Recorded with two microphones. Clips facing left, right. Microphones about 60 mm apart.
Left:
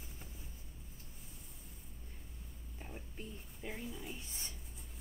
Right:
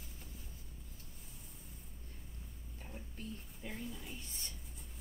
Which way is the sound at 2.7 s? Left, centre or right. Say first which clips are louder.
Left 2 dB; centre.